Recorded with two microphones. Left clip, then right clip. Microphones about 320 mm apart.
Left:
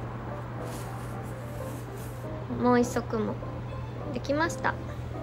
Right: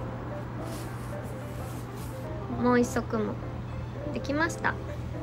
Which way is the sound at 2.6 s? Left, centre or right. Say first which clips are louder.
Left 1 dB; centre.